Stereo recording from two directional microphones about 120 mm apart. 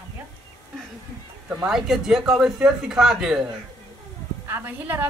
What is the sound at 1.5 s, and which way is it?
Speech, 10° right (ahead or behind).